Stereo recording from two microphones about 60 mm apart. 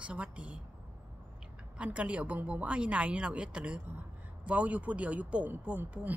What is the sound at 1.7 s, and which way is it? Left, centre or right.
Speech, right.